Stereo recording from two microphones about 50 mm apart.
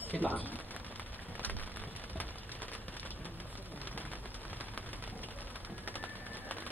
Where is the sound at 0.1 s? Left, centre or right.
Left.